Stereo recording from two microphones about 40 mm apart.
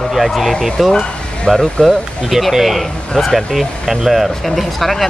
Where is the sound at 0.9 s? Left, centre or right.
Centre.